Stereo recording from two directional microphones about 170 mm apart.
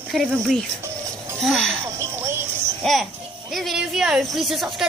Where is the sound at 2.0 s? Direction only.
15° right (ahead or behind).